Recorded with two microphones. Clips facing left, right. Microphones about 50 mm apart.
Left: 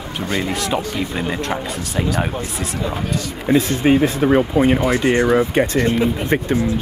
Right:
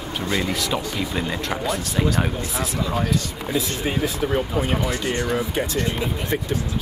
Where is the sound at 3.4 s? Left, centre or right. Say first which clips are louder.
Left 9 dB; left.